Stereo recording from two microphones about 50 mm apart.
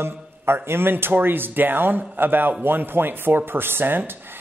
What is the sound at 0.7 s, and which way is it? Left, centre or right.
Speech, right.